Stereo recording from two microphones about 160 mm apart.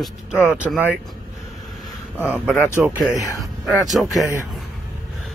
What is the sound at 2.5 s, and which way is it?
Speech, 15° left (ahead or behind).